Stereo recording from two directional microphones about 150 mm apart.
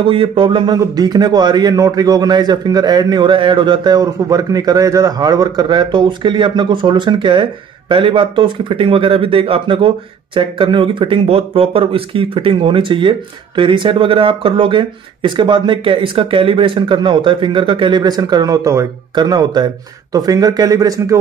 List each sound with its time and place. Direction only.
0.0 s a man's voice: 35° right (ahead or behind)